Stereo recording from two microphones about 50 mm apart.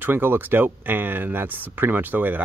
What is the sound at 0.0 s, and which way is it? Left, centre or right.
Speech, right.